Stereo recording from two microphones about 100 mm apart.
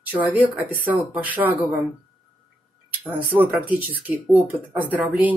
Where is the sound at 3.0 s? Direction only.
15° right (ahead or behind).